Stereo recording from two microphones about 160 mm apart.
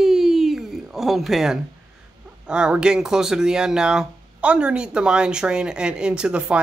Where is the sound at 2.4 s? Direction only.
5° right (ahead or behind).